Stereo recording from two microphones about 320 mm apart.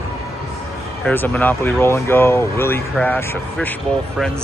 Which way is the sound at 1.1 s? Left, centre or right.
Centre.